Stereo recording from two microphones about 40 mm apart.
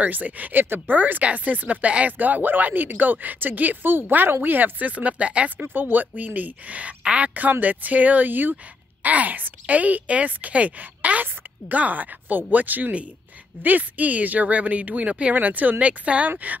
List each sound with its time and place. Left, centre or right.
0.0 s speech: right
2.1 s speech: right
5.7 s speech: right
7.6 s speech: right
9.0 s speech: right
15.3 s speech: right
15.8 s speech: right